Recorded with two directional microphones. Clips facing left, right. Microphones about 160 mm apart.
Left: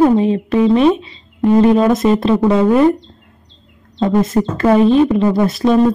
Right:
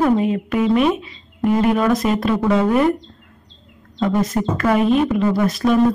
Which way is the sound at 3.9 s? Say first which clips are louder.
Left 5 dB; 25° left (ahead or behind).